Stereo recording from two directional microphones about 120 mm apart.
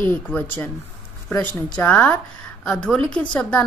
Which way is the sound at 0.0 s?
15° left (ahead or behind).